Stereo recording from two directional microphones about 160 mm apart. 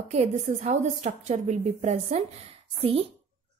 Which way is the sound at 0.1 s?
45° right (ahead or behind).